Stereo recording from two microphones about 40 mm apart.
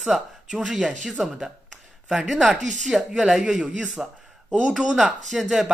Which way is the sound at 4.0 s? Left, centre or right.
Centre.